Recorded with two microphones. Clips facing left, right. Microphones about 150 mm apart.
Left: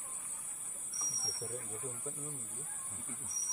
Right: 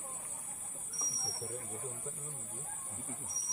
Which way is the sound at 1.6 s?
10° right (ahead or behind).